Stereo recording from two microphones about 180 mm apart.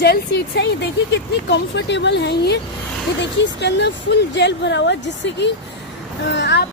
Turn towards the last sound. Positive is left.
turn(degrees=70)  # may be behind; listen again after turning